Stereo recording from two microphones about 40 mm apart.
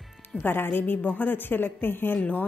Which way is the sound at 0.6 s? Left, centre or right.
Left.